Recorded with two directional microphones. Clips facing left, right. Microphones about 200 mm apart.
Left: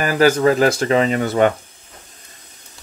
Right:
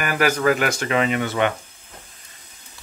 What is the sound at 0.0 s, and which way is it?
Speech, 30° left (ahead or behind).